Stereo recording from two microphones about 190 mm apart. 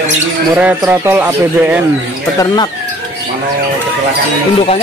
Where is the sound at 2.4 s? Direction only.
20° left (ahead or behind).